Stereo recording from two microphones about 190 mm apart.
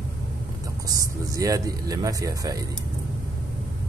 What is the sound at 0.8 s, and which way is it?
Speech, 15° right (ahead or behind).